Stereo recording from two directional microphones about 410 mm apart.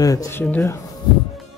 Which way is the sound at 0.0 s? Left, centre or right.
Centre.